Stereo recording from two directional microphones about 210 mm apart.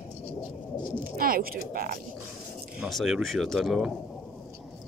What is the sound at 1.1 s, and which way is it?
Speech, 45° right (ahead or behind).